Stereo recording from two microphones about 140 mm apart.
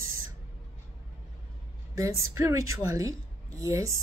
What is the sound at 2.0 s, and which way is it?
A woman's voice, 20° right (ahead or behind).